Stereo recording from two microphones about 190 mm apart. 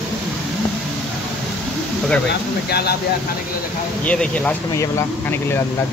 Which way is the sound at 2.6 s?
55° left (ahead or behind).